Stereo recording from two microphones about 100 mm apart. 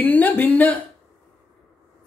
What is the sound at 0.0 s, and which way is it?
Speech, 15° left (ahead or behind).